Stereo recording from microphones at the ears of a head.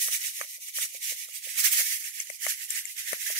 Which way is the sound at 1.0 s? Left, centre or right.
Right.